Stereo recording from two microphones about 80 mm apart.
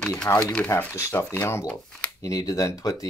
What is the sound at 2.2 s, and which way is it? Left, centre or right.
Speech, left.